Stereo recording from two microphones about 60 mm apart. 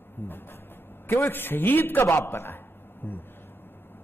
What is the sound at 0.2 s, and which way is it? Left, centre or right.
A man's voice, left.